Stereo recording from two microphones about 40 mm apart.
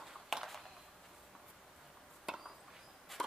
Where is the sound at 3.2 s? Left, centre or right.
Centre.